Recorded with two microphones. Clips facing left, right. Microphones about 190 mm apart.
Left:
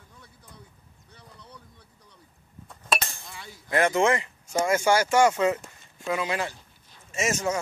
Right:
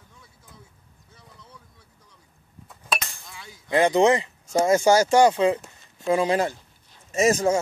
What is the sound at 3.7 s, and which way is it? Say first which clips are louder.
Speech: right 4 dB; 15° right (ahead or behind).